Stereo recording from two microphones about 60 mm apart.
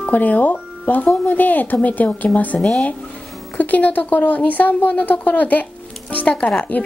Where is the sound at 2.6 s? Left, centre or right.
Centre.